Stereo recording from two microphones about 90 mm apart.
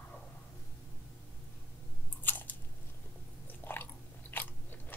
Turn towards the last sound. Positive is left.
turn(degrees=20)  # may be behind; listen again after turning